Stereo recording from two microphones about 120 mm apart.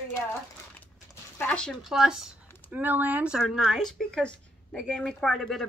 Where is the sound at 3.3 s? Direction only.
5° right (ahead or behind).